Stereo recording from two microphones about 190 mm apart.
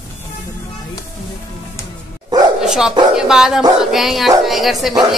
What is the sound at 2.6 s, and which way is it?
Dog, 5° right (ahead or behind).